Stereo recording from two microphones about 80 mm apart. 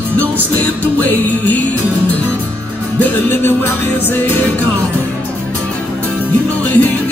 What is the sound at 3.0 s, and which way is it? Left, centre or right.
Music, left.